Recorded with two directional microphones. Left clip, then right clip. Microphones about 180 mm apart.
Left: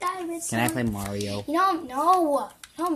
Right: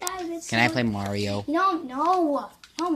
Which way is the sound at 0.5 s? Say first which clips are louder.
Right 5 dB; 5° right (ahead or behind).